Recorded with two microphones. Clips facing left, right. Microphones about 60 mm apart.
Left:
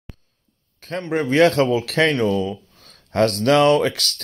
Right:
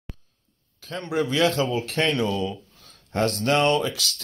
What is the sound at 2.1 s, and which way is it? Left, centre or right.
Speech, left.